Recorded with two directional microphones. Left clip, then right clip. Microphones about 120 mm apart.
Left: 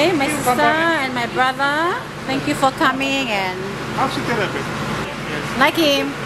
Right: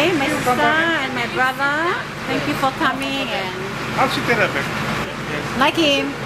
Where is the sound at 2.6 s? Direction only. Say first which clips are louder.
Left 5 dB; 40° left (ahead or behind).